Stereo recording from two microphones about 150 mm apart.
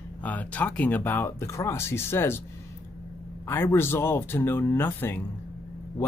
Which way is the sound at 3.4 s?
15° left (ahead or behind).